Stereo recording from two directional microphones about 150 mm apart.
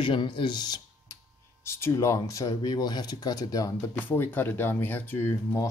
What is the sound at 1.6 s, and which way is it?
Speech, 15° left (ahead or behind).